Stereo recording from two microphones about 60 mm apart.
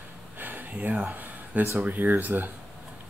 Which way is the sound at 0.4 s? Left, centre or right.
Right.